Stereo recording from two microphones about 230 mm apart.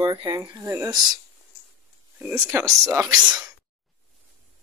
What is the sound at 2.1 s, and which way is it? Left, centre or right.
Speech, centre.